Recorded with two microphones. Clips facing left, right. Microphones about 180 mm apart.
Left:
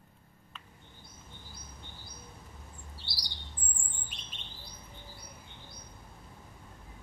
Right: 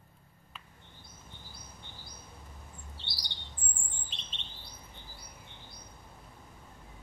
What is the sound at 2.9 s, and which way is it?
Chirp, 25° right (ahead or behind).